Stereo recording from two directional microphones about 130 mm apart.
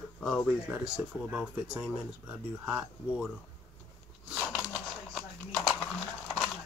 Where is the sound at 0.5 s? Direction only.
5° right (ahead or behind).